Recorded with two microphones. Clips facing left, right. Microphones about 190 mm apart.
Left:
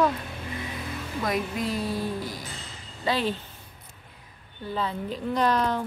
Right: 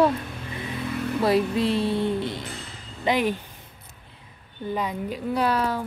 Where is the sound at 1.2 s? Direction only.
30° right (ahead or behind).